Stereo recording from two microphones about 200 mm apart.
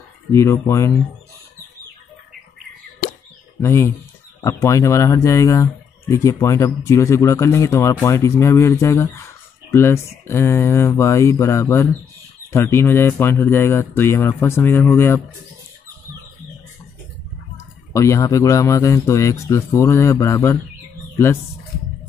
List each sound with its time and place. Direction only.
0.3 s speech: 15° left (ahead or behind)
3.6 s speech: 15° left (ahead or behind)
17.6 s speech: 15° left (ahead or behind)